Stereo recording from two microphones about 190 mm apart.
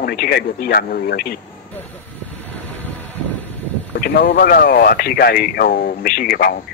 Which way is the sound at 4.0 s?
55° left (ahead or behind).